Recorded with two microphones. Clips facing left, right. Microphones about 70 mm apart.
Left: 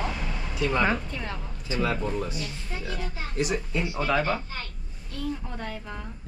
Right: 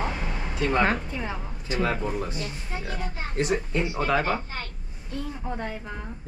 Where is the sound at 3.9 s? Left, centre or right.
Centre.